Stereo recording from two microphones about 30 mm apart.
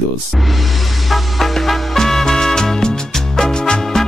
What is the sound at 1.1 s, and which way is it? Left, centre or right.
Music, centre.